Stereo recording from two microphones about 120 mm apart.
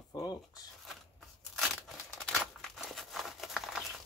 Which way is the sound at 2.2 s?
Centre (ahead or behind).